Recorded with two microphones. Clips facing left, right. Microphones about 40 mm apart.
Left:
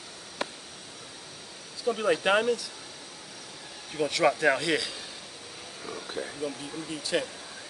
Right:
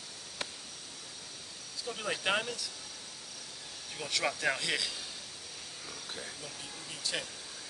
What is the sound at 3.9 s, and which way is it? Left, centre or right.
Speech, centre.